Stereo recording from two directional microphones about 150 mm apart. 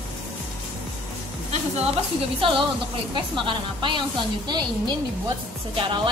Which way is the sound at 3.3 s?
30° right (ahead or behind).